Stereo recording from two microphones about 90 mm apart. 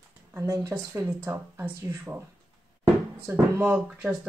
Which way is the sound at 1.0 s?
25° right (ahead or behind).